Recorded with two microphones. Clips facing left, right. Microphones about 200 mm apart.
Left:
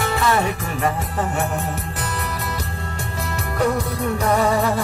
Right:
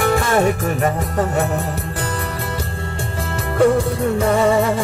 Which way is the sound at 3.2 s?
30° right (ahead or behind).